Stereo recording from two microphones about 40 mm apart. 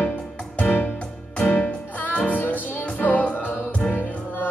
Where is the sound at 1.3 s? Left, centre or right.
Left.